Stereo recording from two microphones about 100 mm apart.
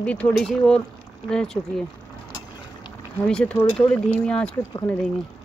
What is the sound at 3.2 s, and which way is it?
Speech, 10° left (ahead or behind).